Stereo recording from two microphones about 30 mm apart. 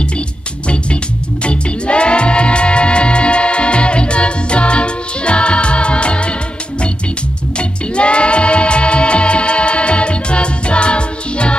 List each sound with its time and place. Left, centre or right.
1.4 s music: left
7.5 s music: left